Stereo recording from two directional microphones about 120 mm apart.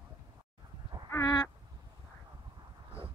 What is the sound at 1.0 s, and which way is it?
Duck, 30° left (ahead or behind).